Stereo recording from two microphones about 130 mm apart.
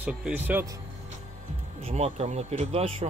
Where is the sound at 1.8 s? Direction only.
50° right (ahead or behind).